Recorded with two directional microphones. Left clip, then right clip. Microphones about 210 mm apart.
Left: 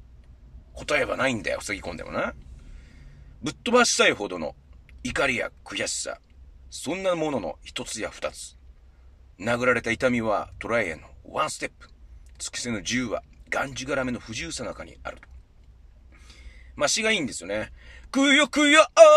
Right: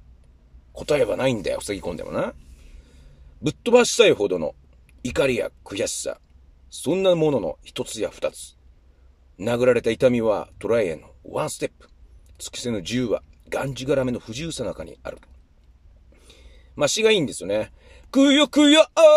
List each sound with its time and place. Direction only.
0.8 s speech: 20° right (ahead or behind)
3.4 s speech: 20° right (ahead or behind)
16.4 s speech: 20° right (ahead or behind)